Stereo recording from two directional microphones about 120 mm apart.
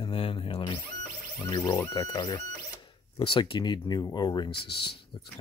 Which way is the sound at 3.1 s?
45° left (ahead or behind).